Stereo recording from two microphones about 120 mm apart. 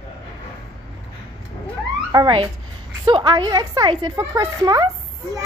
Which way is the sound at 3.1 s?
40° right (ahead or behind).